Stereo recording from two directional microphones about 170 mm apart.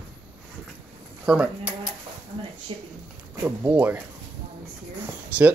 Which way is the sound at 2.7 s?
30° right (ahead or behind).